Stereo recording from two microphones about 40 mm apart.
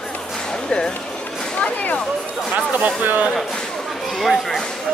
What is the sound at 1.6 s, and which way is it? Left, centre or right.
Speech, left.